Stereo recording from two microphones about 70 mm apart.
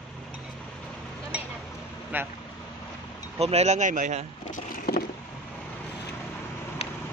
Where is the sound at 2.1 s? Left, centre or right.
Right.